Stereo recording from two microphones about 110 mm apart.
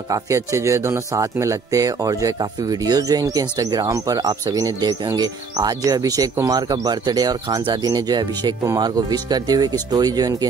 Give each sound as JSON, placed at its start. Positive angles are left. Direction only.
{"t": 0.1, "sound": "speech", "side_deg": -30}